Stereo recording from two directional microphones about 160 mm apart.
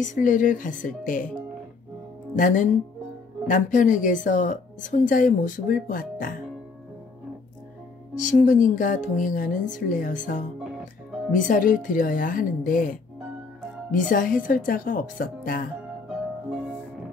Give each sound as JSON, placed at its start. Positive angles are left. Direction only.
{"t": 0.0, "sound": "a woman's voice", "side_deg": 55}
{"t": 2.3, "sound": "a woman's voice", "side_deg": 55}
{"t": 8.2, "sound": "a woman's voice", "side_deg": 55}
{"t": 13.9, "sound": "a woman's voice", "side_deg": 60}